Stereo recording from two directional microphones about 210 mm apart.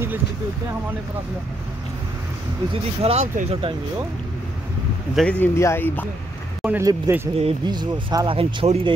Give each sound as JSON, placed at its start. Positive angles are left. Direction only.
{"t": 3.0, "sound": "speech", "side_deg": -30}
{"t": 5.1, "sound": "speech", "side_deg": 5}
{"t": 6.6, "sound": "speech", "side_deg": -10}
{"t": 7.3, "sound": "speech", "side_deg": -25}